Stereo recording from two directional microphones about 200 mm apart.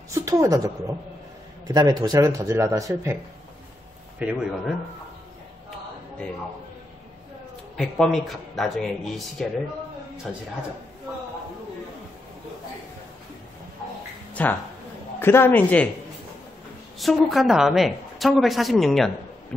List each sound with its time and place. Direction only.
0.1 s a woman's voice: 15° right (ahead or behind)
4.2 s speech: 5° right (ahead or behind)
7.7 s a woman's voice: centre (ahead or behind)
14.4 s a man's voice: 10° left (ahead or behind)
17.0 s a woman's voice: centre (ahead or behind)